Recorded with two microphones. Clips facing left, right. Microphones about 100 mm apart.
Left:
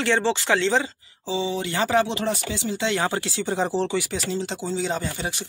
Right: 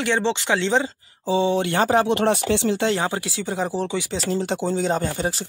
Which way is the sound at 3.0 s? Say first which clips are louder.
Even; 15° right (ahead or behind).